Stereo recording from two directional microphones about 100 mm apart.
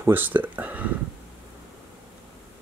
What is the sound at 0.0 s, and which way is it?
Speech, 20° right (ahead or behind).